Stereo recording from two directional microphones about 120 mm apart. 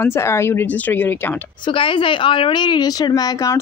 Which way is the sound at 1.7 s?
45° left (ahead or behind).